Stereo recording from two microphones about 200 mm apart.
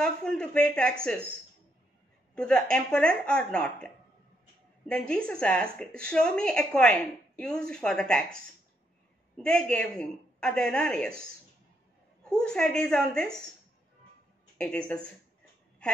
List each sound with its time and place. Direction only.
0.0 s a woman's voice: 5° left (ahead or behind)
2.3 s a woman's voice: 5° left (ahead or behind)
9.4 s a woman's voice: 5° left (ahead or behind)
14.6 s a woman's voice: 5° left (ahead or behind)